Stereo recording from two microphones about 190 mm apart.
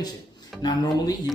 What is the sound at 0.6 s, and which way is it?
Speech, 20° left (ahead or behind).